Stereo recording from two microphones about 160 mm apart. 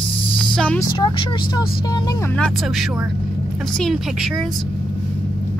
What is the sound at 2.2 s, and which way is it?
Speech, 5° left (ahead or behind).